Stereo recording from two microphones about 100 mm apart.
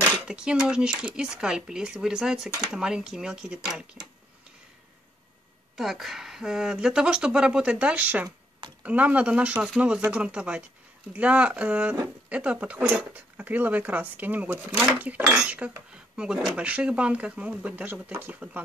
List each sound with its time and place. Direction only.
0.2 s speech: 10° right (ahead or behind)
5.8 s speech: centre (ahead or behind); by 18.6 s 20° right (ahead or behind)